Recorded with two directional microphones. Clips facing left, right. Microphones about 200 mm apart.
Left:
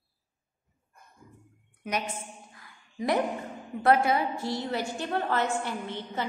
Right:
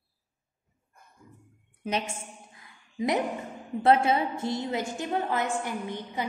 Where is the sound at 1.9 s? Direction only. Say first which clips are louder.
Right 1 dB; 25° right (ahead or behind).